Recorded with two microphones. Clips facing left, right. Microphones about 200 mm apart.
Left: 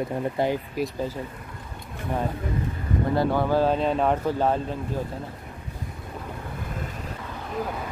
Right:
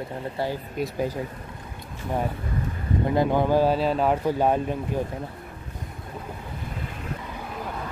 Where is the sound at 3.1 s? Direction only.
15° right (ahead or behind).